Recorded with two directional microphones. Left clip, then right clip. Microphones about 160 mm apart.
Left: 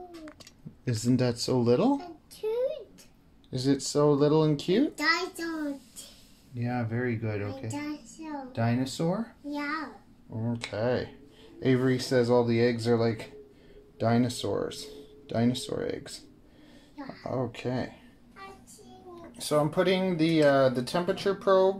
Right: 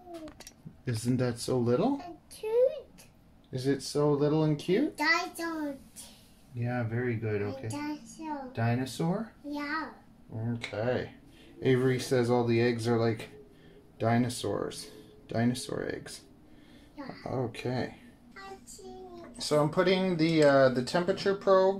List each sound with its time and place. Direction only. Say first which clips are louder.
0.8 s speech: left 4 dB; 35° left (ahead or behind)
2.4 s a sound: even; 5° left (ahead or behind)
3.5 s speech: left 3 dB; 55° left (ahead or behind)
5.0 s child singing: left 1 dB; 10° left (ahead or behind)
6.6 s speech: left 2 dB; 60° left (ahead or behind)
7.4 s child singing: even; 10° left (ahead or behind)
8.5 s speech: left 4 dB; 55° left (ahead or behind)
9.5 s child singing: left 1 dB; 10° left (ahead or behind)
10.7 s speech: left 2 dB; 45° left (ahead or behind)
11.6 s speech: left 1 dB; 25° left (ahead or behind)
16.9 s a sound: left 2 dB; 5° left (ahead or behind)
17.3 s speech: left 2 dB; 20° left (ahead or behind)
19.3 s speech: left 1 dB; 5° left (ahead or behind)